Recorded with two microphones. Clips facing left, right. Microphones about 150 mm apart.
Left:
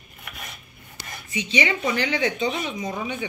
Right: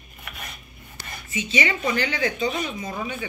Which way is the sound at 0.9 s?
15° left (ahead or behind).